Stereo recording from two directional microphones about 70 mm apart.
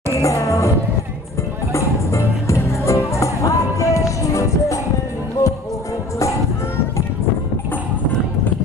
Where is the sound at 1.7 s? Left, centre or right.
Left.